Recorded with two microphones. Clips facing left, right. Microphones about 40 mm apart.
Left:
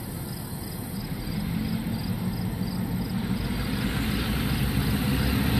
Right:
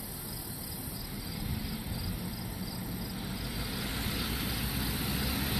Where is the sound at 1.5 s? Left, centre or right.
Left.